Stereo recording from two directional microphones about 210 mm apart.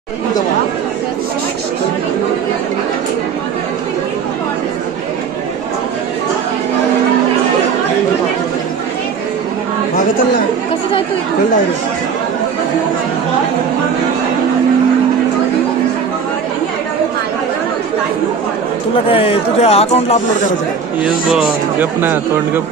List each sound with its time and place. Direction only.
19.0 s speech: 25° left (ahead or behind)
21.0 s a man's voice: 5° right (ahead or behind)